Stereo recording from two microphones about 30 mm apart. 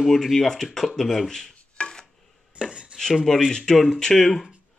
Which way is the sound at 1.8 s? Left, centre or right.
Left.